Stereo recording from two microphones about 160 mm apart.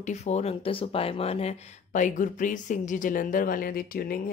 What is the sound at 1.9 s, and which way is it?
Speech, 55° left (ahead or behind).